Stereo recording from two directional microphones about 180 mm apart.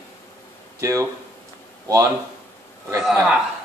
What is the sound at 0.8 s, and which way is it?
Speech, 15° right (ahead or behind).